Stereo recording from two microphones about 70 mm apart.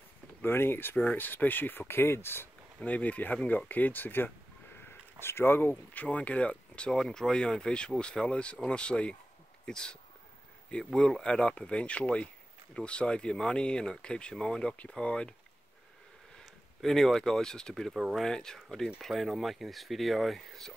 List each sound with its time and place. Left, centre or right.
0.4 s speech: left
2.8 s speech: left
16.8 s speech: centre